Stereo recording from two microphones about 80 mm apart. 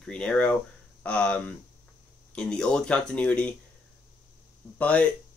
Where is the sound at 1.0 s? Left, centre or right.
Centre.